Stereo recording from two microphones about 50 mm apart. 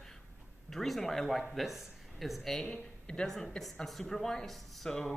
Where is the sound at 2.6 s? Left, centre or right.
Centre.